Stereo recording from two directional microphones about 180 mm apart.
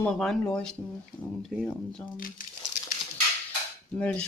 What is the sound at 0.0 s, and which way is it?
Speech, 5° left (ahead or behind).